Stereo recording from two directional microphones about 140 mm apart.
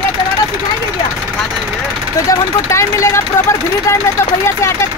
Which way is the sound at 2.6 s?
20° left (ahead or behind).